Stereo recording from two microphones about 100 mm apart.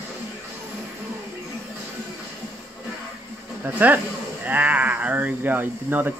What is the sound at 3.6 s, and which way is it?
Speech, 20° right (ahead or behind).